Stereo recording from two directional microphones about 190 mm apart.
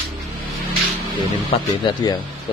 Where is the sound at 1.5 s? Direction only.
30° left (ahead or behind).